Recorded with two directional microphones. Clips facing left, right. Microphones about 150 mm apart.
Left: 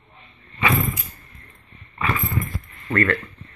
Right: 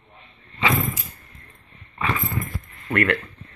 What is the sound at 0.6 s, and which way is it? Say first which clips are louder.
Door: left 1 dB; 15° right (ahead or behind).